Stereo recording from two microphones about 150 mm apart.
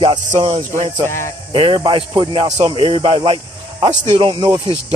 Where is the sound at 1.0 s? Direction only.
15° left (ahead or behind).